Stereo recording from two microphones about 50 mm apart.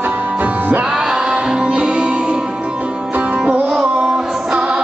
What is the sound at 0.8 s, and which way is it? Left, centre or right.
Music, centre.